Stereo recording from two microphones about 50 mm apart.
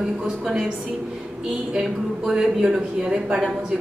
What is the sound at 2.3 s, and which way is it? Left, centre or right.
Speech, centre.